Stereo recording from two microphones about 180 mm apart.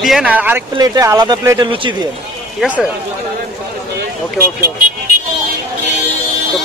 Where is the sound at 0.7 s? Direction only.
20° right (ahead or behind).